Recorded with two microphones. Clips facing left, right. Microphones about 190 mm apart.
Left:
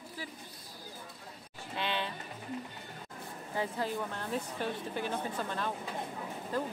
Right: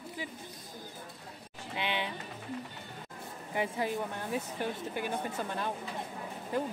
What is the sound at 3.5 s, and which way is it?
Speech, 10° right (ahead or behind).